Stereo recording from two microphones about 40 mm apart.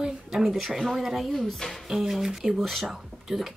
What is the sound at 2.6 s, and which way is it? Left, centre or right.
Speech, centre.